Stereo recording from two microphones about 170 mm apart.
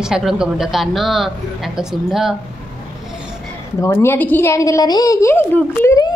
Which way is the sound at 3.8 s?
15° left (ahead or behind).